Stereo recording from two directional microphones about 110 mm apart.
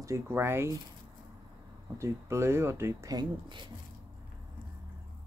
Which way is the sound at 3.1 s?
45° right (ahead or behind).